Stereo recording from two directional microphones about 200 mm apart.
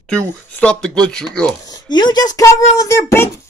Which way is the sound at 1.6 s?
20° left (ahead or behind).